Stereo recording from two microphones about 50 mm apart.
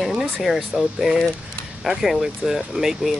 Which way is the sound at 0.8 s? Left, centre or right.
Centre.